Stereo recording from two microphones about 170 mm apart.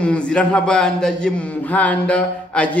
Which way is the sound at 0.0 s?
5° left (ahead or behind).